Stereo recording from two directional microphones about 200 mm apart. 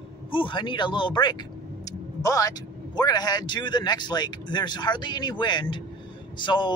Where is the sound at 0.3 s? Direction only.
25° left (ahead or behind).